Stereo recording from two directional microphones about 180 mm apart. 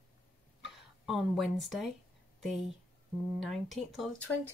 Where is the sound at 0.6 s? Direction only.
Centre (ahead or behind).